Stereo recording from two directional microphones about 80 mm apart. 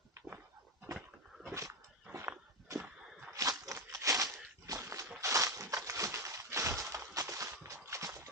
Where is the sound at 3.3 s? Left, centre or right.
Right.